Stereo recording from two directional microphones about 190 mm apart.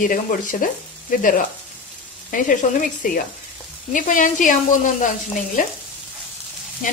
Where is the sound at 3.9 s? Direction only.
45° left (ahead or behind).